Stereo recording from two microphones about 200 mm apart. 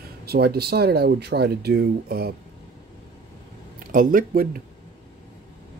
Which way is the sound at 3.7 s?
45° right (ahead or behind).